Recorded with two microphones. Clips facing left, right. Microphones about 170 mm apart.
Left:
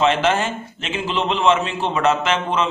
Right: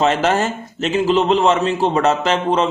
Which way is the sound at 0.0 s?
40° right (ahead or behind).